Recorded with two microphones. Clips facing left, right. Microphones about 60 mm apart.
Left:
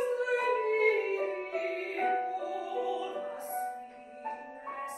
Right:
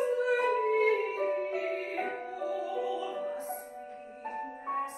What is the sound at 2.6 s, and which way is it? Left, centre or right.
Music, left.